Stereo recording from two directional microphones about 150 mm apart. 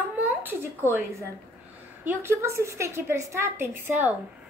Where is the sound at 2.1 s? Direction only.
15° right (ahead or behind).